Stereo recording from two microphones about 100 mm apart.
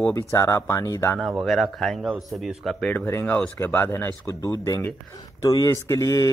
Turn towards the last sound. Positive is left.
turn(degrees=35)  # may be behind; listen again after turning